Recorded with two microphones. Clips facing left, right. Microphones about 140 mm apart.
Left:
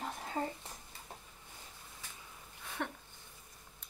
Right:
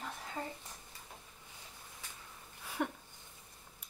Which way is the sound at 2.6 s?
10° right (ahead or behind).